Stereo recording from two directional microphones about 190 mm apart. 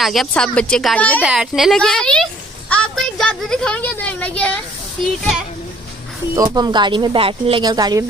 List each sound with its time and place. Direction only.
0.0 s speech: centre (ahead or behind)
1.2 s a woman's voice: 5° right (ahead or behind)
6.3 s speech: 20° right (ahead or behind)